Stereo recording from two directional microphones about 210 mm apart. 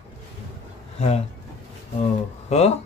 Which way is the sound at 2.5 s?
30° left (ahead or behind).